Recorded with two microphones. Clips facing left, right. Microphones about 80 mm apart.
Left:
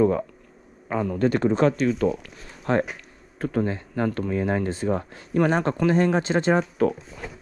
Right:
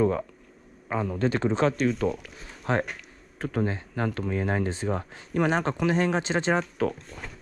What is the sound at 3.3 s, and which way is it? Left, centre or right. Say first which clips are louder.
Speech: left 3 dB; left.